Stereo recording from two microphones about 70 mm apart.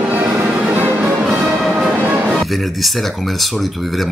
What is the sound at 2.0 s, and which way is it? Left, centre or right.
Music, right.